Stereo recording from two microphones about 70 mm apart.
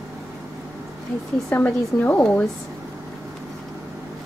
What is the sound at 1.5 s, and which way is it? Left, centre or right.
Speech, left.